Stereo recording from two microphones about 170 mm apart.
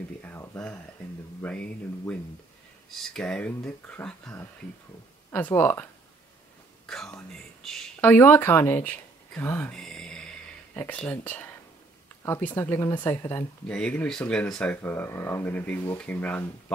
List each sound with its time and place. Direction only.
0.2 s a sound: 10° left (ahead or behind)
1.4 s speech: 10° left (ahead or behind)
6.9 s speech: 5° left (ahead or behind)
13.7 s speech: 5° left (ahead or behind)